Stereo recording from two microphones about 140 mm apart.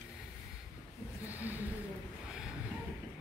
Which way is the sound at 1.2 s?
10° right (ahead or behind).